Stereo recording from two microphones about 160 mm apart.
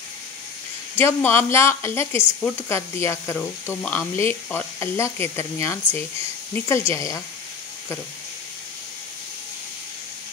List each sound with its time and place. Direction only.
0.9 s a woman's voice: 15° left (ahead or behind)